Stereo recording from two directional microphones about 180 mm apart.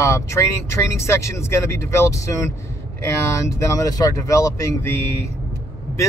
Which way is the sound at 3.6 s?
20° left (ahead or behind).